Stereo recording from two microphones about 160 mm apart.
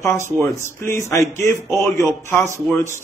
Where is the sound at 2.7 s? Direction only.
15° left (ahead or behind).